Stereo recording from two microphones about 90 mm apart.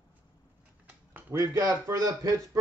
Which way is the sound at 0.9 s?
20° right (ahead or behind).